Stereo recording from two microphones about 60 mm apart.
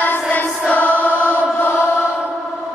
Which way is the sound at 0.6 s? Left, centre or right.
Left.